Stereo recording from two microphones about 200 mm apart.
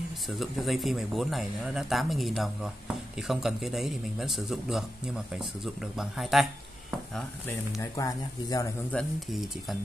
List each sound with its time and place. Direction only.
0.4 s speech: centre (ahead or behind)
7.2 s speech: 10° left (ahead or behind)
8.9 s speech: centre (ahead or behind)